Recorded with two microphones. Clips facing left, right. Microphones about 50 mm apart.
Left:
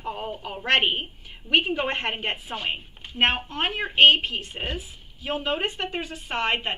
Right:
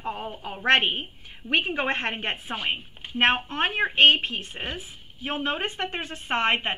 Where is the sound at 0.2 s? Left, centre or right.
Right.